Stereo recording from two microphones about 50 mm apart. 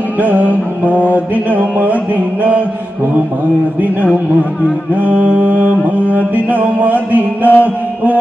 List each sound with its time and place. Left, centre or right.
0.2 s music: right
5.0 s music: right
7.6 s a sound: right